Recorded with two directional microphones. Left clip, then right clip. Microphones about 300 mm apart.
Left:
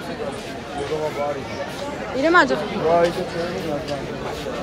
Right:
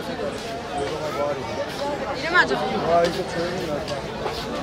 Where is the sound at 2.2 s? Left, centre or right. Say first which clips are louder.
Left 4 dB; centre.